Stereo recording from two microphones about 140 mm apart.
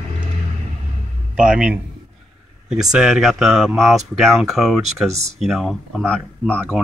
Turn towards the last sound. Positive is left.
turn(degrees=10)  # may be behind; listen again after turning